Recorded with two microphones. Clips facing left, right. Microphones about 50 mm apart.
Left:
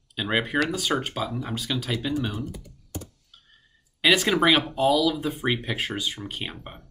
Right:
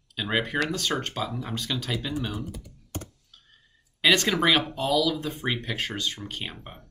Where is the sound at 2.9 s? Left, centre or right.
Right.